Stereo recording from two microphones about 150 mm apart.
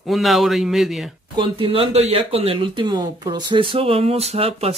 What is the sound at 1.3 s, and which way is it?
Speech, 35° right (ahead or behind).